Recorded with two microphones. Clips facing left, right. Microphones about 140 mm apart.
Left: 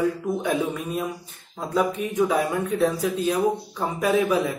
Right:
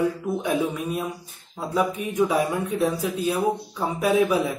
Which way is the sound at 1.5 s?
10° right (ahead or behind).